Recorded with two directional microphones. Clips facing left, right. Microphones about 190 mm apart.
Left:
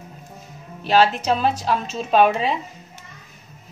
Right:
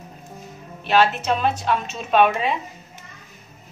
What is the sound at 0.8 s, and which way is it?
A woman's voice, 35° left (ahead or behind).